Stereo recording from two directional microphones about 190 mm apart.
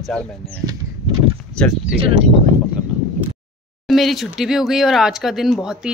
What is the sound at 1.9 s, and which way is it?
Speech, 30° right (ahead or behind).